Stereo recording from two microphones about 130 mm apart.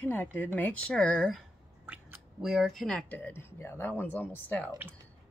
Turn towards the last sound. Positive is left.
turn(degrees=15)  # may be behind; listen again after turning